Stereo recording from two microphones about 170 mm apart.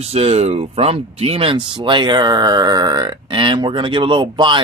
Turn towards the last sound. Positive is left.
turn(degrees=-30)  # may be behind; listen again after turning